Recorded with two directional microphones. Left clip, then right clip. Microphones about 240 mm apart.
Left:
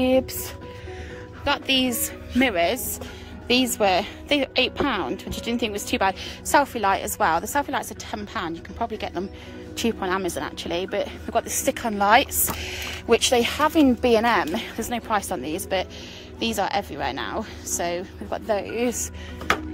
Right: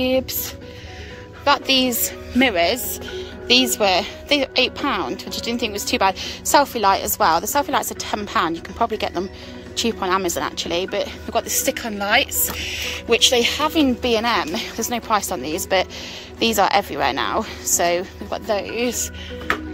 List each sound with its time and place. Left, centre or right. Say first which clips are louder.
0.0 s speech: right 1 dB; centre
1.4 s a woman's voice: right 5 dB; centre